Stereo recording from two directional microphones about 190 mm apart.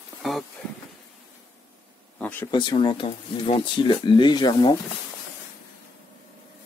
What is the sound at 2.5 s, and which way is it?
Speech, 20° left (ahead or behind).